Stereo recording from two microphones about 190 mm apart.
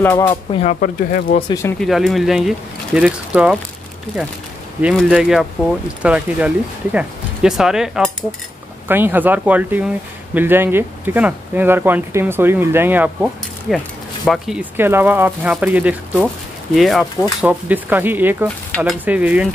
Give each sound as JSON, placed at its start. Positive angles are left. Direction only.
{"t": 0.0, "sound": "speech", "side_deg": 10}
{"t": 0.3, "sound": "speech", "side_deg": 35}
{"t": 0.7, "sound": "speech", "side_deg": 45}
{"t": 1.5, "sound": "speech", "side_deg": 15}
{"t": 1.8, "sound": "speech", "side_deg": 0}
{"t": 4.8, "sound": "speech", "side_deg": -5}
{"t": 8.8, "sound": "speech", "side_deg": -10}